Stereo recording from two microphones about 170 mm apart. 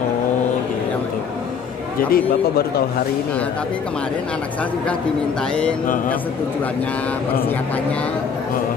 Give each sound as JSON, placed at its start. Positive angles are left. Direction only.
{"t": 2.0, "sound": "a man's voice", "side_deg": 60}